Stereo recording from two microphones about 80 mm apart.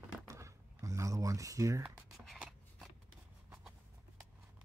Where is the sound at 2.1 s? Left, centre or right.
Centre.